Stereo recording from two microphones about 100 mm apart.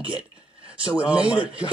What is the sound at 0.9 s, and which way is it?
Speech, 10° right (ahead or behind).